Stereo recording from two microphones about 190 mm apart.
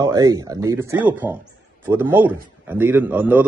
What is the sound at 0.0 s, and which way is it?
A man's voice, 15° right (ahead or behind).